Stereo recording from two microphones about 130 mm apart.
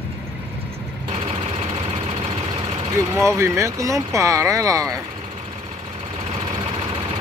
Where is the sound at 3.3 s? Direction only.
20° right (ahead or behind).